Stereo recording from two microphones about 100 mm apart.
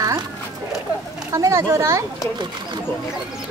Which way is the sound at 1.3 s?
30° right (ahead or behind).